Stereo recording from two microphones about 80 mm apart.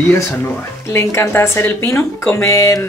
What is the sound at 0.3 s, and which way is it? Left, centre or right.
Speech, left.